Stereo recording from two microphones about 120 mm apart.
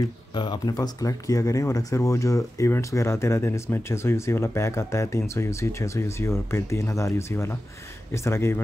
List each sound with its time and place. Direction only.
0.4 s speech: 35° left (ahead or behind)